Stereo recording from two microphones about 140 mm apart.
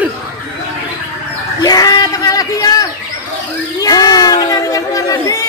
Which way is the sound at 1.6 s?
25° left (ahead or behind).